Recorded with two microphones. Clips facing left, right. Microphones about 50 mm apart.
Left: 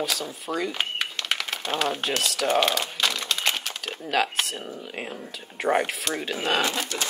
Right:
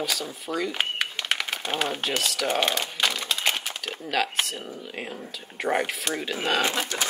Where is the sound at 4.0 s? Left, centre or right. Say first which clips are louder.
Left 2 dB; centre.